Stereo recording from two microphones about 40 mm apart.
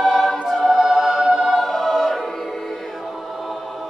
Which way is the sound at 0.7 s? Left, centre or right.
Centre.